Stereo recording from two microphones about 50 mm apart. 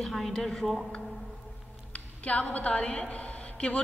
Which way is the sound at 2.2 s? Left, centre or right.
Left.